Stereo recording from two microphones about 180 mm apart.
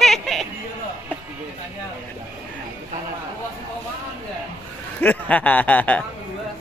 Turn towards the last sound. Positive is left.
turn(degrees=10)  # may be behind; listen again after turning